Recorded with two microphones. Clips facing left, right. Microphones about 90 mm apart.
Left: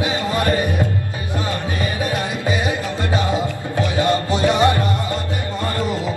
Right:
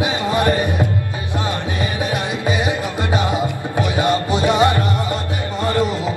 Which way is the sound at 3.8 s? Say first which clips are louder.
Even; 20° right (ahead or behind).